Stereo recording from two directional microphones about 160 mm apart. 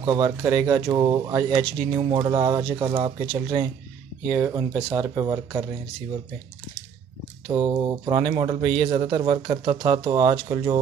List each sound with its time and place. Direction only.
0.0 s speech: 25° right (ahead or behind)
4.4 s speech: 15° right (ahead or behind)
7.4 s speech: 25° right (ahead or behind)